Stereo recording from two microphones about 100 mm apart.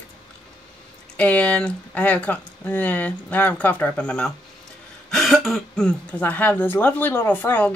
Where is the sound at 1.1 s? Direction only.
15° left (ahead or behind).